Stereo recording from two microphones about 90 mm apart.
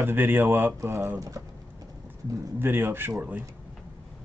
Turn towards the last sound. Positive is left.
turn(degrees=-25)  # may be behind; listen again after turning